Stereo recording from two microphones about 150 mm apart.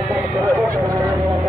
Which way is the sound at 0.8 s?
25° right (ahead or behind).